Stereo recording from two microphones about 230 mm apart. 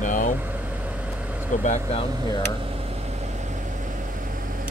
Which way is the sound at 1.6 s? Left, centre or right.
Left.